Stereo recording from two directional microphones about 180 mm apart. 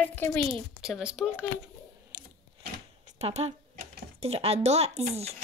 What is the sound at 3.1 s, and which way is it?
Speech, 35° right (ahead or behind).